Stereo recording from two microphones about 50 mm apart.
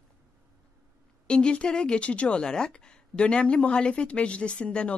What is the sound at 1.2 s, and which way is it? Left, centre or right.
A woman's voice, centre.